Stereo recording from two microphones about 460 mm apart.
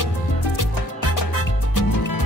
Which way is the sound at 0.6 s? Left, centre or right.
Left.